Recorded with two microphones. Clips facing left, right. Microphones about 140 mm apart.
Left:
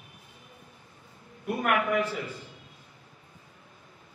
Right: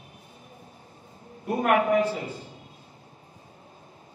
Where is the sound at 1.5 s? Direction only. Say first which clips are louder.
Right 5 dB; 35° right (ahead or behind).